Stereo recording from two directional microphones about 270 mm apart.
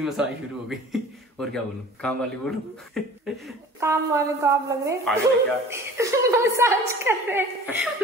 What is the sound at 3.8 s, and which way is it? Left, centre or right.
A woman's voice, centre.